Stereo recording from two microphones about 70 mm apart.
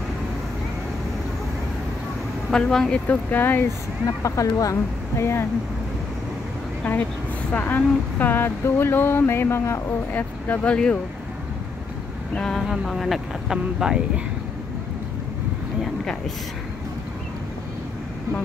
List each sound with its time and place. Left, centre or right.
2.5 s speech: centre
3.1 s speech: left
4.2 s speech: left
7.5 s speech: left
10.1 s speech: left
12.4 s speech: centre
12.6 s speech: centre